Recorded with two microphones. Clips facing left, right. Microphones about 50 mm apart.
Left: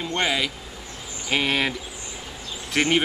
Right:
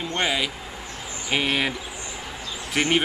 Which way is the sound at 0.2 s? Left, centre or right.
Centre.